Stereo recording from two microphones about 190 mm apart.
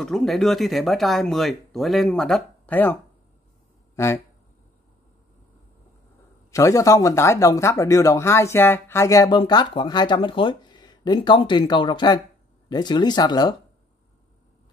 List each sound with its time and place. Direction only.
0.0 s speech: centre (ahead or behind)
6.5 s speech: 15° left (ahead or behind)